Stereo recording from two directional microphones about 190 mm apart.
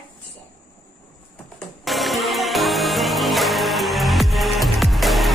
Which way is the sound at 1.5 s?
Centre (ahead or behind).